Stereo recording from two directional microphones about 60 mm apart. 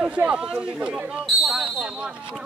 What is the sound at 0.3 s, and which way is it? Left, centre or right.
Speech, centre.